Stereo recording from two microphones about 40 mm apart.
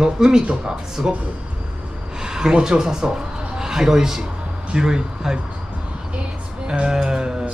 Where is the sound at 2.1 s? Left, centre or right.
Centre.